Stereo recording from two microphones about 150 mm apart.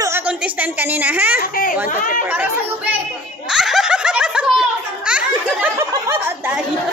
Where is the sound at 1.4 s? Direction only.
65° left (ahead or behind).